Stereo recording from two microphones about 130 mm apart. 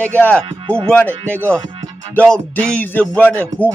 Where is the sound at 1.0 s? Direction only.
15° right (ahead or behind).